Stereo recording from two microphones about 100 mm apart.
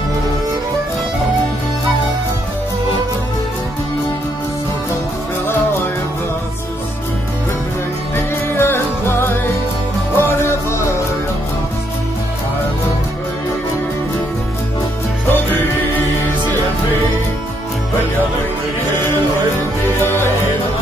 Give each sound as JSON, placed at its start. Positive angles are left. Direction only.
{"t": 8.5, "sound": "music", "side_deg": 25}
{"t": 20.0, "sound": "music", "side_deg": 25}